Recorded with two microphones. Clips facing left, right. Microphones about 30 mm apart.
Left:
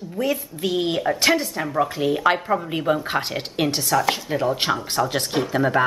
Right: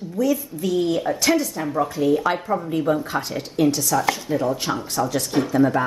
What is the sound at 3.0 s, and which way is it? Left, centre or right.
Speech, left.